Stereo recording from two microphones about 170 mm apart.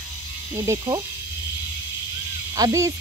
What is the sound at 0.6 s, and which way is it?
Speech, 15° right (ahead or behind).